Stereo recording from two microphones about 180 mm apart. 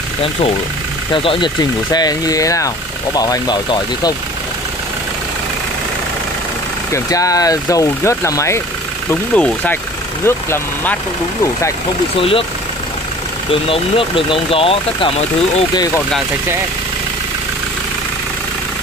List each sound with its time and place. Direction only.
1.1 s speech: 30° left (ahead or behind)
6.9 s speech: 20° left (ahead or behind)
12.2 s speech: 30° left (ahead or behind)
13.5 s speech: 30° left (ahead or behind)